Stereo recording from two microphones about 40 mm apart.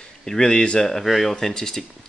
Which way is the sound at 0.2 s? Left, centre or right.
Centre.